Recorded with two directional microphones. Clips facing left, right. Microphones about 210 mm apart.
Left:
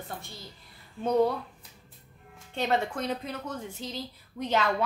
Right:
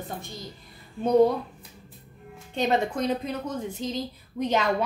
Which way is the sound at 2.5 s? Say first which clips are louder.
Right 4 dB; 15° right (ahead or behind).